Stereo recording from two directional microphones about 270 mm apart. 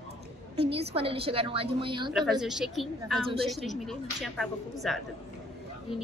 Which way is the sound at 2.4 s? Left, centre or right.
Centre.